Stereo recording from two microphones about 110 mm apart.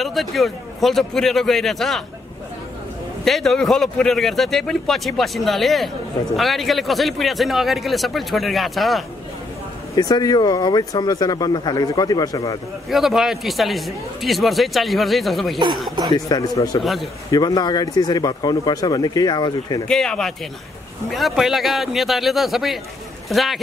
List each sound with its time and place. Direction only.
0.0 s a man's voice: centre (ahead or behind)
3.3 s a man's voice: centre (ahead or behind)
9.9 s speech: 35° left (ahead or behind)
12.9 s a man's voice: 5° right (ahead or behind)
16.3 s speech: 35° left (ahead or behind)
19.9 s a man's voice: 5° left (ahead or behind)